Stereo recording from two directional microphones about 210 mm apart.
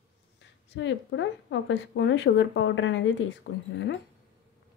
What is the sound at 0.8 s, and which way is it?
A woman's voice, 60° left (ahead or behind).